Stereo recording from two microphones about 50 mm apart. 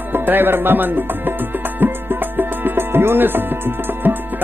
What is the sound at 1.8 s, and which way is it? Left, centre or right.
Music, right.